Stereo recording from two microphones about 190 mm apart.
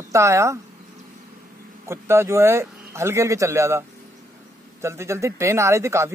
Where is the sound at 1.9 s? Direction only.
15° right (ahead or behind).